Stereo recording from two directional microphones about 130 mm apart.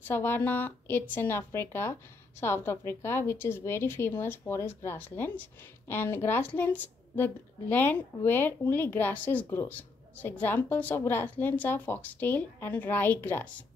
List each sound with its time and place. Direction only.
0.1 s a woman's voice: 15° left (ahead or behind)